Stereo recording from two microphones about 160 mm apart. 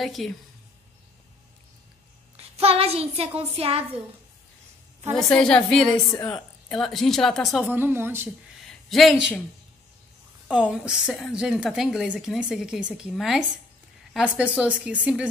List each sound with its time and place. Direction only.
0.0 s a woman's voice: centre (ahead or behind)
2.5 s a sound: 40° right (ahead or behind)
5.1 s a woman's voice: 5° left (ahead or behind)
7.7 s a woman's voice: 15° right (ahead or behind)
8.6 s a sound: centre (ahead or behind)
10.5 s a woman's voice: 5° right (ahead or behind)